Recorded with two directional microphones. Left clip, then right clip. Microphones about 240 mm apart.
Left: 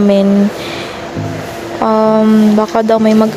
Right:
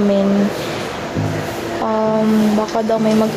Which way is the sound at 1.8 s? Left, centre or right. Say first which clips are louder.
Left 7 dB; left.